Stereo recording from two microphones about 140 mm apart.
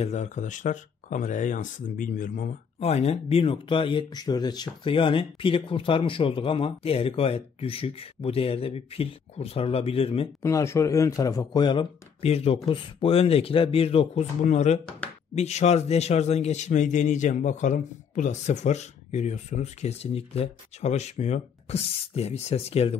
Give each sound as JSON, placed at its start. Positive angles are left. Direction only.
{"t": 0.0, "sound": "speech", "side_deg": 55}
{"t": 2.8, "sound": "a man's voice", "side_deg": 50}
{"t": 10.4, "sound": "a man's voice", "side_deg": 20}
{"t": 12.2, "sound": "a man's voice", "side_deg": 45}
{"t": 14.4, "sound": "a man's voice", "side_deg": 55}